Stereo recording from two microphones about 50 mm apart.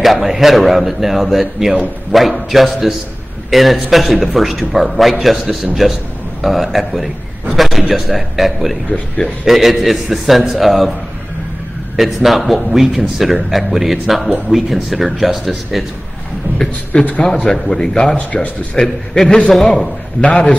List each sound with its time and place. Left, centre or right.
0.0 s a man's voice: centre
12.0 s speech: centre
17.2 s a man's voice: centre
18.1 s speech: left
18.8 s a man's voice: centre
20.2 s speech: left